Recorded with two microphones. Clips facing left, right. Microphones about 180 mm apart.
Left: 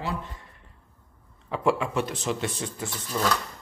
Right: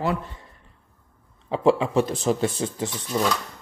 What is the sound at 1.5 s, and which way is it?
Speech, 30° right (ahead or behind).